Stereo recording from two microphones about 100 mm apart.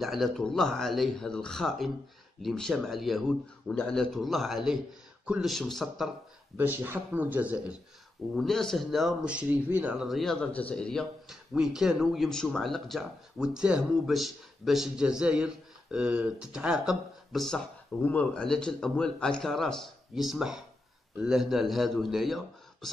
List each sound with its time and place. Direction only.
0.0 s a man's voice: centre (ahead or behind)
6.5 s a man's voice: 20° right (ahead or behind)
8.4 s a man's voice: 5° left (ahead or behind)
9.2 s a man's voice: 10° right (ahead or behind)
10.0 s speech: centre (ahead or behind)
11.5 s a man's voice: 5° right (ahead or behind)
18.0 s a man's voice: 15° left (ahead or behind); by 22.8 s centre (ahead or behind)